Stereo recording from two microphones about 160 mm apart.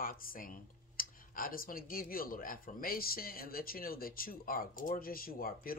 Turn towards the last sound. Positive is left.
turn(degrees=65)  # may be behind; listen again after turning